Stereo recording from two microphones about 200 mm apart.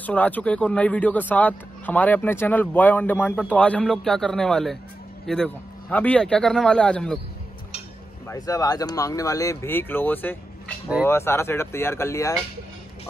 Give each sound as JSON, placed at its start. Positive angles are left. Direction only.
{"t": 0.0, "sound": "speech", "side_deg": 10}
{"t": 8.3, "sound": "speech", "side_deg": 15}